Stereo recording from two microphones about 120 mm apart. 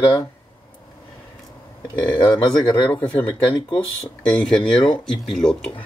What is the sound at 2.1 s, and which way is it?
Speech, 40° left (ahead or behind).